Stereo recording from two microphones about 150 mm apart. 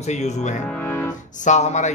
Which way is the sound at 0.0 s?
50° left (ahead or behind).